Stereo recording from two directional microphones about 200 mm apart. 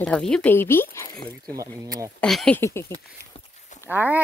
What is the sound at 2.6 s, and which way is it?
Speech, 15° left (ahead or behind).